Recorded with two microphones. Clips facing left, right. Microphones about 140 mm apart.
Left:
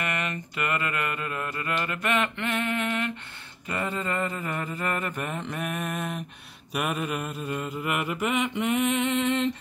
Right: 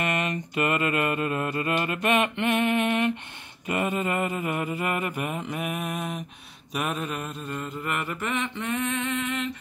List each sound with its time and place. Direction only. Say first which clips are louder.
0.0 s mantra: right 4 dB; 20° right (ahead or behind); by 9.5 s 25° left (ahead or behind)